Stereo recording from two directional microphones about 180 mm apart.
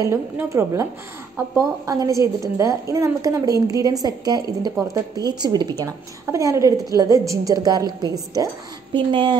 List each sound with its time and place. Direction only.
0.0 s a woman's voice: 15° right (ahead or behind)